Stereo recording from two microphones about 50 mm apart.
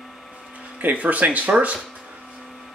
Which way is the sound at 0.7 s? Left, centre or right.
Right.